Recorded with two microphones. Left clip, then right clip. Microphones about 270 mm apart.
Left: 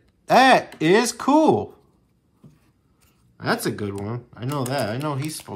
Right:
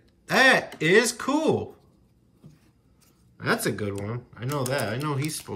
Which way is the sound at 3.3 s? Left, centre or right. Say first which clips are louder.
Left 2 dB; centre.